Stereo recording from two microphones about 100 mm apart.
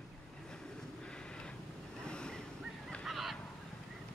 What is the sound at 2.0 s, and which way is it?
Waves, 10° left (ahead or behind).